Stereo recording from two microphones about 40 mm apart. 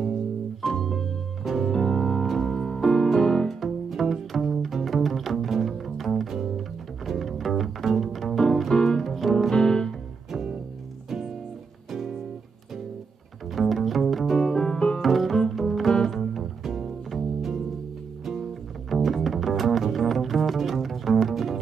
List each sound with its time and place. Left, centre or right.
0.6 s music: centre
1.4 s organ: centre
1.7 s music: centre
3.1 s bowed string instrument: centre
7.1 s music: centre
8.7 s piano: centre
9.0 s music: centre
9.5 s music: centre
11.9 s music: centre
13.5 s music: centre
14.4 s music: centre
15.0 s double bass: centre
16.1 s music: centre